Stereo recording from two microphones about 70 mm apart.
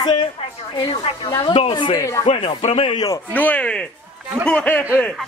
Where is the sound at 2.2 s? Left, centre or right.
Left.